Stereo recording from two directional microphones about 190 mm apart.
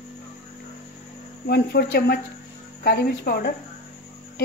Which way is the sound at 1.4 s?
60° left (ahead or behind).